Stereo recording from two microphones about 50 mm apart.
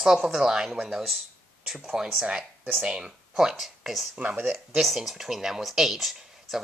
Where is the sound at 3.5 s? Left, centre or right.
Centre.